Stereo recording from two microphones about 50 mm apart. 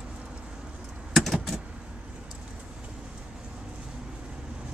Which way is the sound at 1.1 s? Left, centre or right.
Centre.